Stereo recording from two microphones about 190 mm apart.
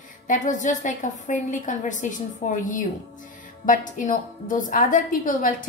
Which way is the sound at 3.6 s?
45° left (ahead or behind).